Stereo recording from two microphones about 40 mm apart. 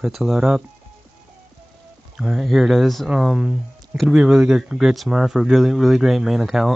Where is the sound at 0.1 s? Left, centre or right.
Centre.